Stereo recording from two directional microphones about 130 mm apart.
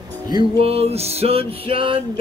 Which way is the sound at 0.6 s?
50° right (ahead or behind).